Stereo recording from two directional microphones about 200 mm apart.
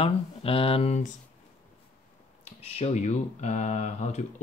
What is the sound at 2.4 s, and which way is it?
Speech, 30° left (ahead or behind).